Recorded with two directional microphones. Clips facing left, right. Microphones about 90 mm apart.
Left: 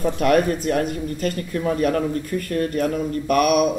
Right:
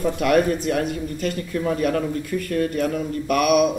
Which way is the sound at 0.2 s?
40° left (ahead or behind).